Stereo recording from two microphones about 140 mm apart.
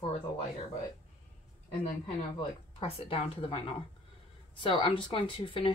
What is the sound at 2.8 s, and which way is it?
Speech, 40° left (ahead or behind).